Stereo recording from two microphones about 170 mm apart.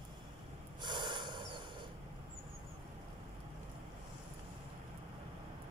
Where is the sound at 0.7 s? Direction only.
25° right (ahead or behind).